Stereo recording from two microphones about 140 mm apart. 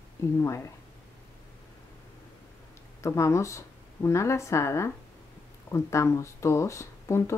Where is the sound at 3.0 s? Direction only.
20° left (ahead or behind).